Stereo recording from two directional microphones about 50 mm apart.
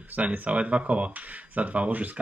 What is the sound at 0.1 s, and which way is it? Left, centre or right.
Speech, right.